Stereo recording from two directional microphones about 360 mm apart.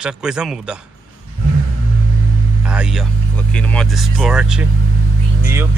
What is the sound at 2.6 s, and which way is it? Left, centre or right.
A man's voice, centre.